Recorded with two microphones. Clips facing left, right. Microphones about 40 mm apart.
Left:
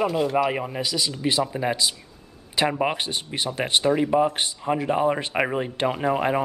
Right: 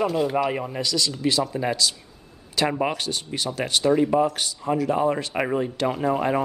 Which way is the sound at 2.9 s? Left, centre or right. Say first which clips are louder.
Even; left.